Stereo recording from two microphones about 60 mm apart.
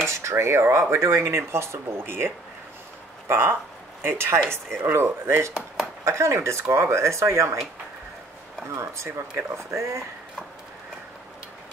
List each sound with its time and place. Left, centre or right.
0.1 s speech: right
6.0 s speech: right
8.7 s speech: right